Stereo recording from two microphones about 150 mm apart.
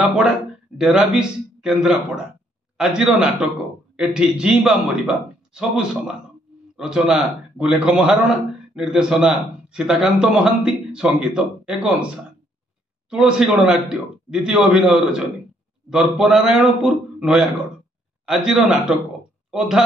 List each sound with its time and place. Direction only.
0.7 s a man's voice: 5° right (ahead or behind)
13.1 s a man's voice: 5° right (ahead or behind)